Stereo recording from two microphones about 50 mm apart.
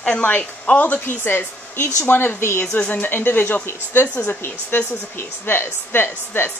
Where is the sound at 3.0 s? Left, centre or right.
Left.